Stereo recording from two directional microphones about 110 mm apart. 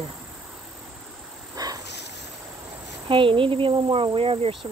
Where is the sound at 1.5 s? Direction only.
35° right (ahead or behind).